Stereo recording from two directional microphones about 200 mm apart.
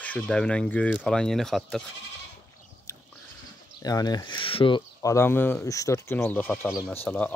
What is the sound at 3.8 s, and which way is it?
Speech, 20° left (ahead or behind).